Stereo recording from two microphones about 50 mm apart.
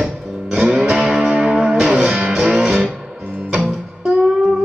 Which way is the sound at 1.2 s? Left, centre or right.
Right.